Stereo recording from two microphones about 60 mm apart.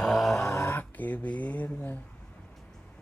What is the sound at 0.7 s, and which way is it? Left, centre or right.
Speech, left.